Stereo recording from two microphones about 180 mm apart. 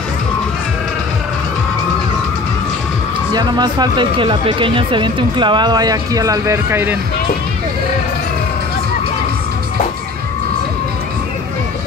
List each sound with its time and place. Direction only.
3.3 s speech: 25° right (ahead or behind)